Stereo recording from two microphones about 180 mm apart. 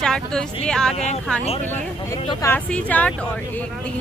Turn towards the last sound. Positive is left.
turn(degrees=5)  # may be behind; listen again after turning